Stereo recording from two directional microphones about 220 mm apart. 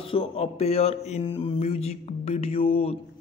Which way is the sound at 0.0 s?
25° left (ahead or behind).